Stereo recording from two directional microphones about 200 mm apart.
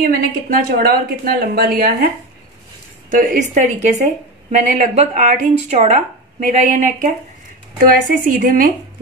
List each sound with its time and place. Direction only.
0.0 s a woman's voice: 50° right (ahead or behind)
3.1 s a woman's voice: 45° right (ahead or behind)